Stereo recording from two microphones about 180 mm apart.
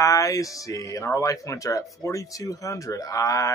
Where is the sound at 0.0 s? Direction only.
20° left (ahead or behind).